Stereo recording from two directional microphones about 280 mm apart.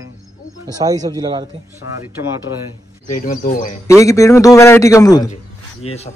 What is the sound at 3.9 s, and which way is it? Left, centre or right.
A man's voice, centre.